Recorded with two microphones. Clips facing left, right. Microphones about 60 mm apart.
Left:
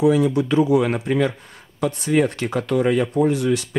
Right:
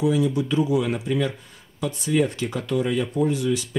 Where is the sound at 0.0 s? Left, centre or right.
Left.